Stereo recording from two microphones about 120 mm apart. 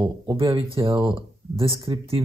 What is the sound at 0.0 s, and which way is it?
Speech, 45° right (ahead or behind).